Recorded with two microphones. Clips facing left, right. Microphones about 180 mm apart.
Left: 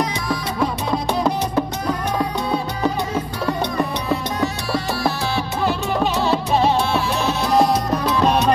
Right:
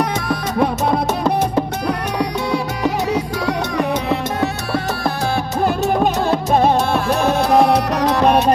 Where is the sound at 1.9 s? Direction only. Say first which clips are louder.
Right 1 dB; 80° right; by 5.1 s 55° right (ahead or behind).